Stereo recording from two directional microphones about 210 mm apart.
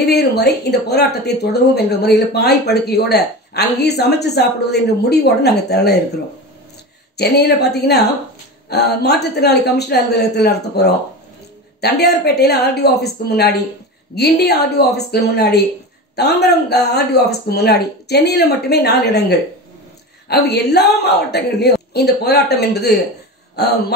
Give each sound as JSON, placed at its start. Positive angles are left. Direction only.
{"t": 0.1, "sound": "speech", "side_deg": 50}
{"t": 7.2, "sound": "speech", "side_deg": 50}